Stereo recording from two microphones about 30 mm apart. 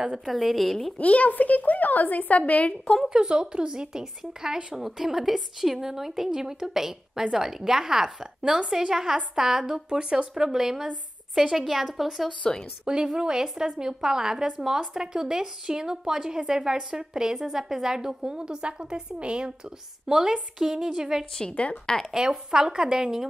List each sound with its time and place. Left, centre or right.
0.3 s a woman's voice: centre
0.9 s a woman's voice: left
3.1 s a woman's voice: right
9.8 s speech: right
10.1 s a woman's voice: centre
12.8 s a woman's voice: right
20.1 s a woman's voice: right
21.5 s a woman's voice: left
22.1 s a woman's voice: right